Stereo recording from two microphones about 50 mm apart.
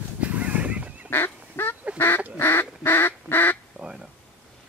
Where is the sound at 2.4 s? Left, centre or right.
Left.